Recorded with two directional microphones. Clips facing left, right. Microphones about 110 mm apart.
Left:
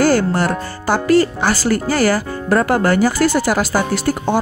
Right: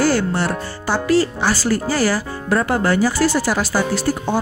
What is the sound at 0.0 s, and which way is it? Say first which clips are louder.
Speech: left 3 dB; 45° left (ahead or behind).